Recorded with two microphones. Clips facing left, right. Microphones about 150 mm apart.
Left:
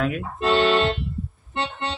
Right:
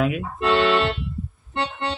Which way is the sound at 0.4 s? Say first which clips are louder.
Even; 30° left (ahead or behind).